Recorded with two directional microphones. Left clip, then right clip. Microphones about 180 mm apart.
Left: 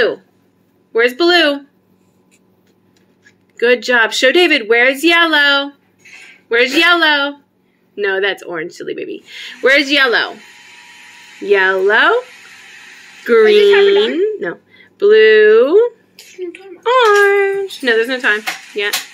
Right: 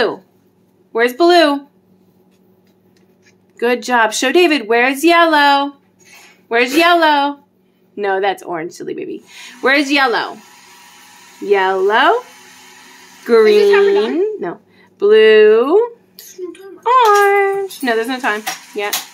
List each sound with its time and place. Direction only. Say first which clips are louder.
0.9 s speech: right 1 dB; 25° right (ahead or behind)
3.5 s speech: left 2 dB; 25° right (ahead or behind)
11.4 s child singing: left 2 dB; 10° right (ahead or behind)
13.7 s speech: left 2 dB; 50° right (ahead or behind)
14.2 s speech: left 2 dB; 15° right (ahead or behind)
16.8 s child singing: even; 15° right (ahead or behind)